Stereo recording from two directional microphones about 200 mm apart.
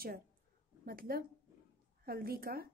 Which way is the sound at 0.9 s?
50° right (ahead or behind).